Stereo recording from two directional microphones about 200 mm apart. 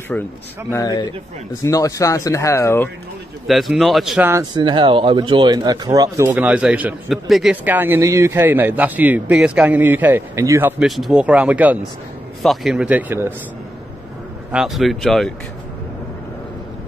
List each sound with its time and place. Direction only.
0.1 s speech: 5° left (ahead or behind)
0.7 s speech: 20° left (ahead or behind)
3.4 s speech: centre (ahead or behind)
4.3 s speech: 20° right (ahead or behind)
10.8 s speech: centre (ahead or behind)
14.5 s speech: centre (ahead or behind)